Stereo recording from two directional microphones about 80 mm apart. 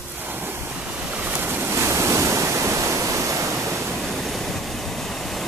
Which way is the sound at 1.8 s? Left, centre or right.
Right.